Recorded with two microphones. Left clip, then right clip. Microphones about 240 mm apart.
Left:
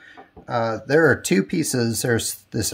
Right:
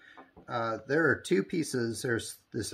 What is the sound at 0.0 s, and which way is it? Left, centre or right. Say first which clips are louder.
Speech: left 9 dB; left.